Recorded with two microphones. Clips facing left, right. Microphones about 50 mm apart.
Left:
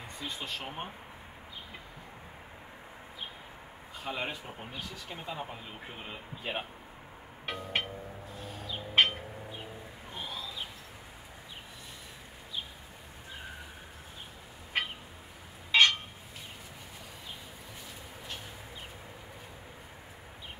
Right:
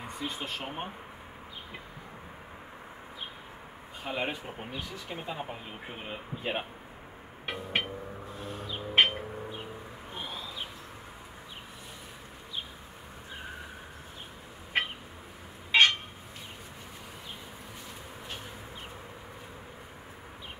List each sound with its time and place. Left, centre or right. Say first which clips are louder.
0.2 s speech: right 2 dB; centre
4.0 s speech: right 3 dB; centre
7.4 s music: right 2 dB; centre
10.1 s bird: right 1 dB; centre
15.7 s a sound: right 1 dB; centre